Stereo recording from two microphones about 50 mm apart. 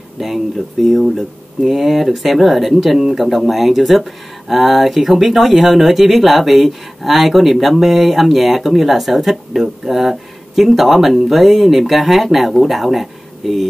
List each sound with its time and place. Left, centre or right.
0.2 s speech: centre